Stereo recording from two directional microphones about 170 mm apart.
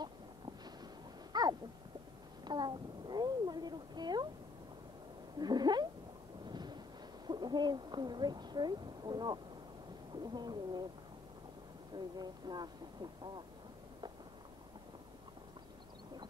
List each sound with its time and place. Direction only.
1.3 s a sound: 25° right (ahead or behind)
5.4 s cat: 25° right (ahead or behind)
6.4 s wind noise: 25° right (ahead or behind)
7.2 s speech: 25° right (ahead or behind)
11.9 s speech: 25° right (ahead or behind)